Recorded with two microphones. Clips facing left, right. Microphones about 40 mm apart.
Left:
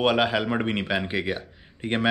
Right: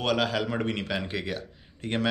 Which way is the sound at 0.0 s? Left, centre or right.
Left.